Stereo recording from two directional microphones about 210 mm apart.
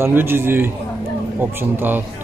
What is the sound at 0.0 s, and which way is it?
Speech, 10° right (ahead or behind).